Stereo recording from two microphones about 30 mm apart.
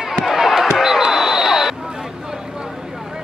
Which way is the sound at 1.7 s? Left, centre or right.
Right.